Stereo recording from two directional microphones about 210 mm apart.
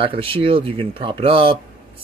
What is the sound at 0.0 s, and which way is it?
Speech, 25° right (ahead or behind).